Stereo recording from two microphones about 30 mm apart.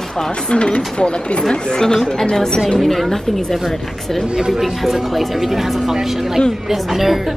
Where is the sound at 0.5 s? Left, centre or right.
Left.